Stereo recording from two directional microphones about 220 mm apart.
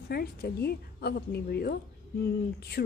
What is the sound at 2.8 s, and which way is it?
Speech, 45° left (ahead or behind).